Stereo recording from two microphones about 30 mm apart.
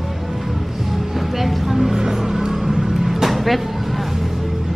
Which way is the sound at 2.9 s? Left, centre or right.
Centre.